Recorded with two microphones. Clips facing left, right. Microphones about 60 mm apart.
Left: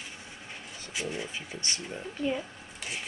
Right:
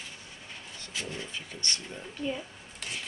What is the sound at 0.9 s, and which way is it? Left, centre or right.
Speech, centre.